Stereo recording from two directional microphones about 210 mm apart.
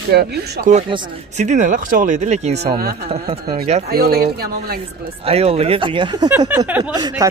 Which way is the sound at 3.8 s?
50° right (ahead or behind).